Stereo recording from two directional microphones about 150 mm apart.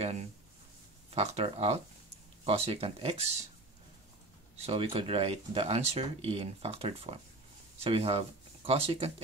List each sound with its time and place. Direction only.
1.1 s speech: 45° right (ahead or behind)
4.6 s speech: 40° right (ahead or behind)